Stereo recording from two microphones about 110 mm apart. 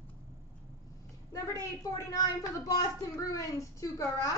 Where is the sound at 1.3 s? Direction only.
35° left (ahead or behind).